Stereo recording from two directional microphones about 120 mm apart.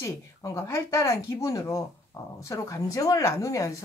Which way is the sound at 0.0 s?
25° left (ahead or behind).